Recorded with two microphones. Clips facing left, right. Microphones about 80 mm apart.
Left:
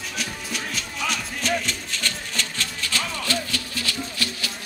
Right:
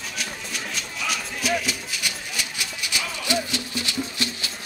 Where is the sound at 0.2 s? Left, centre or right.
Centre.